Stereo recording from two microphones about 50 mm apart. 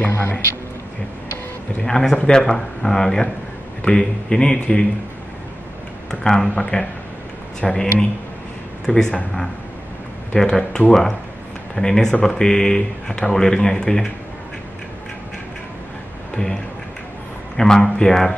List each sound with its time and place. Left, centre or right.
1.8 s a man's voice: centre
6.0 s a man's voice: centre
17.6 s a man's voice: centre